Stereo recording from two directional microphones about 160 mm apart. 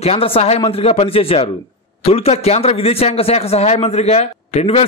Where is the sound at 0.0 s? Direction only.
35° left (ahead or behind).